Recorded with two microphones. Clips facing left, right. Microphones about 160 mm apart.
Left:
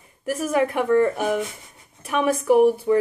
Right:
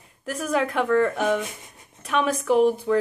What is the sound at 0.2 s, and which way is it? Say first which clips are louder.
A woman's voice: left 3 dB; 10° left (ahead or behind).